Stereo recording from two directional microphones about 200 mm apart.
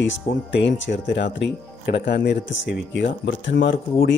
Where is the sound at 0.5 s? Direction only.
60° left (ahead or behind).